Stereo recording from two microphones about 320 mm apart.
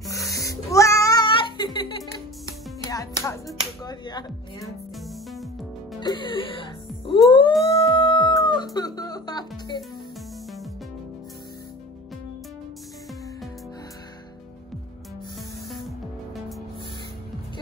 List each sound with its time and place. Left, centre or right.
0.0 s cat: centre
2.4 s music: centre
4.6 s music: centre
5.9 s music: centre
7.5 s howl: centre
8.1 s chicken: centre
8.7 s music: centre